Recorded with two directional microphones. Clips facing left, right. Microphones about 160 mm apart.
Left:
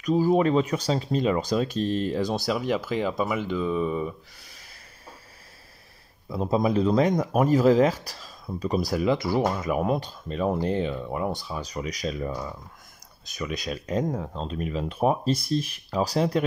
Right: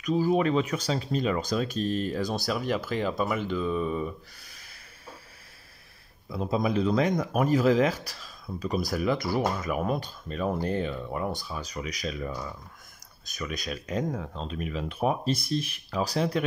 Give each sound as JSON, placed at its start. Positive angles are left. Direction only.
{"t": 0.0, "sound": "speech", "side_deg": 35}
{"t": 6.3, "sound": "speech", "side_deg": 35}